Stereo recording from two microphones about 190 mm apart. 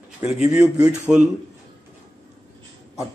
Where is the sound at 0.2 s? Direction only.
5° right (ahead or behind).